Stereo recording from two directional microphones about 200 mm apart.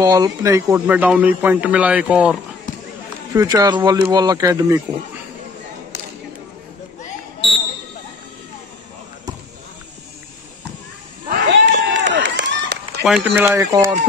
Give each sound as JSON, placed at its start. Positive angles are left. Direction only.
{"t": 0.0, "sound": "a man's voice", "side_deg": -20}
{"t": 3.3, "sound": "speech", "side_deg": -20}
{"t": 11.4, "sound": "run", "side_deg": -60}
{"t": 13.0, "sound": "speech", "side_deg": 0}
{"t": 13.6, "sound": "a man's voice", "side_deg": -15}